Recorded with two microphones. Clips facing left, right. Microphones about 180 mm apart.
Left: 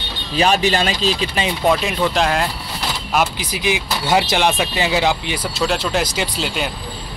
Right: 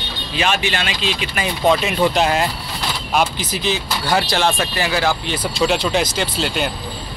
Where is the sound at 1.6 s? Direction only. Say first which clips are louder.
Right 2 dB; centre (ahead or behind); by 5.4 s 15° left (ahead or behind).